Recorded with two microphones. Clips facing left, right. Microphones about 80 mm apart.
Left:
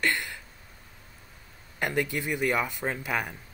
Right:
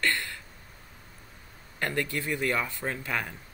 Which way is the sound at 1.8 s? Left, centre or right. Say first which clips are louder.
Left 2 dB; centre.